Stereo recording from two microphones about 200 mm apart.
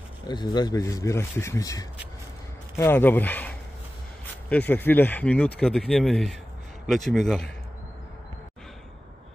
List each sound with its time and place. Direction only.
0.3 s a man's voice: 20° left (ahead or behind); by 7.5 s centre (ahead or behind)